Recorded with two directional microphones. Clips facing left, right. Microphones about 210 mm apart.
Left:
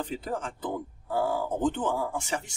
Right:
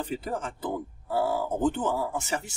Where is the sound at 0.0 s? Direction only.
10° right (ahead or behind).